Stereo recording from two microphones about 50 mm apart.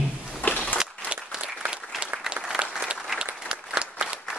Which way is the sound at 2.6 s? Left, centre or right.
Right.